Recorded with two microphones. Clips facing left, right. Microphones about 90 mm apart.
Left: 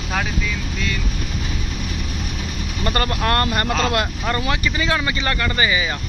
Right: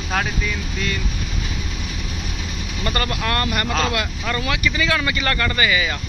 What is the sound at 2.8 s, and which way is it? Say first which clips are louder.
Speech: left 3 dB; 35° left (ahead or behind).